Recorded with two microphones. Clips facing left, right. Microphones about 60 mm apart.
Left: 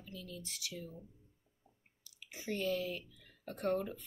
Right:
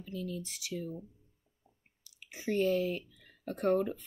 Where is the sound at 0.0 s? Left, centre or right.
Right.